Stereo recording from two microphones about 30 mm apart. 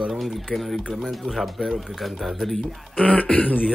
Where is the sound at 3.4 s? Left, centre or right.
Left.